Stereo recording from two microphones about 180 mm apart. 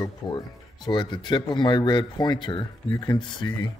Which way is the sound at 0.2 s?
20° left (ahead or behind).